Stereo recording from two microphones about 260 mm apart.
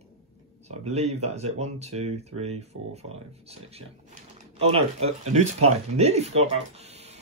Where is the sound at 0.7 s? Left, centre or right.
Right.